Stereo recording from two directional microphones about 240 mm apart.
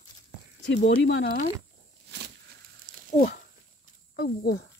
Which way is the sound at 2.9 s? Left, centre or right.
Right.